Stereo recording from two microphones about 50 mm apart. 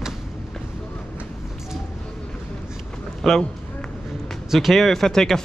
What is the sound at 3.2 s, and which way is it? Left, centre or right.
Run, centre.